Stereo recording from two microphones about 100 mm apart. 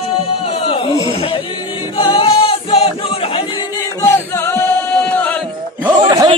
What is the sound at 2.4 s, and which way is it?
Choir, 80° left.